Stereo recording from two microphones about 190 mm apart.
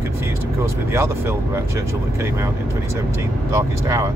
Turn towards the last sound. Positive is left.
turn(degrees=-15)  # may be behind; listen again after turning